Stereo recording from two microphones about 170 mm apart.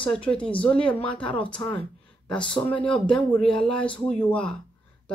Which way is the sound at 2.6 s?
10° left (ahead or behind).